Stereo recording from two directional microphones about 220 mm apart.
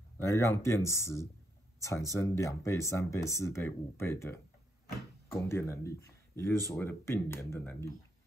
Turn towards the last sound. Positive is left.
turn(degrees=10)  # may be behind; listen again after turning